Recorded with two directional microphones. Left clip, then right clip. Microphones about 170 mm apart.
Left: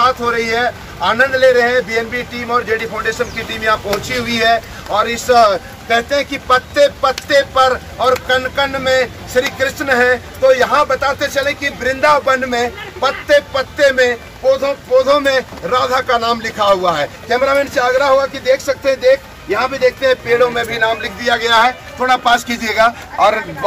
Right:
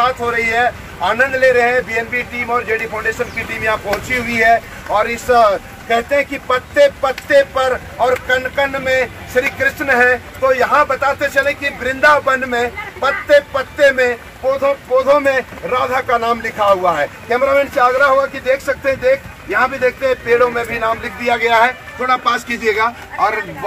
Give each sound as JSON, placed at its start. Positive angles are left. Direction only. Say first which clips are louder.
{"t": 0.0, "sound": "speech", "louder": "left 1 dB", "side_deg": -5}
{"t": 14.6, "sound": "speech", "louder": "left 1 dB", "side_deg": 5}
{"t": 19.5, "sound": "speech", "louder": "left 1 dB", "side_deg": 0}
{"t": 22.0, "sound": "a man's voice", "louder": "left 3 dB", "side_deg": 50}